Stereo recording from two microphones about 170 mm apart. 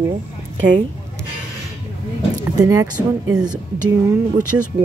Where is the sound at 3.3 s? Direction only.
25° right (ahead or behind).